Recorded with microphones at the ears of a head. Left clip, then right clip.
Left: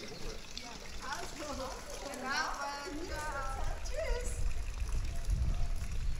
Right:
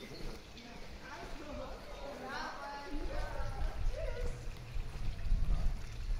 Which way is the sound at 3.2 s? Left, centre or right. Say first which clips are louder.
Left 6 dB; left.